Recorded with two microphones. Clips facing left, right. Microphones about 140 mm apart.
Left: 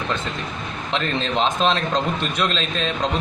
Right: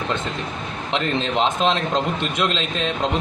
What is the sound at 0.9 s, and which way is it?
A man's voice, 15° right (ahead or behind).